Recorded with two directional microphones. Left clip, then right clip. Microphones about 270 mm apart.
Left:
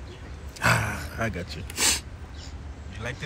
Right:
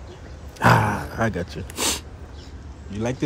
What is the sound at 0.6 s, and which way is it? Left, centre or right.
Grunt, right.